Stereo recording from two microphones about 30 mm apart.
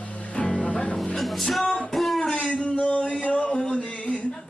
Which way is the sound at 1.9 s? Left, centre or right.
Centre.